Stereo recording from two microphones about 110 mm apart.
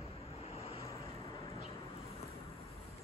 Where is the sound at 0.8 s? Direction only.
30° left (ahead or behind).